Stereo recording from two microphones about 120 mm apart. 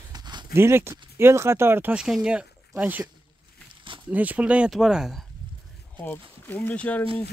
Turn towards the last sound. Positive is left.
turn(degrees=10)  # may be behind; listen again after turning